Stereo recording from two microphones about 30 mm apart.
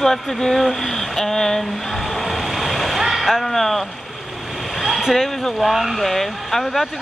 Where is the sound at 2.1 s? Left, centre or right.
Centre.